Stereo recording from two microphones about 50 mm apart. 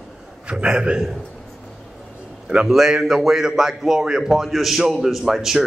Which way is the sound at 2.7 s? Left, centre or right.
Centre.